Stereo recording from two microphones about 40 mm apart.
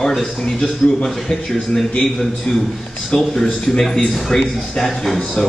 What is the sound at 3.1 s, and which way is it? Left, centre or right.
A man's voice, centre.